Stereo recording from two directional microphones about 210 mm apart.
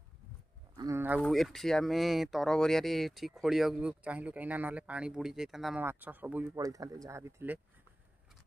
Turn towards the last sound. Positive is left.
turn(degrees=-10)  # may be behind; listen again after turning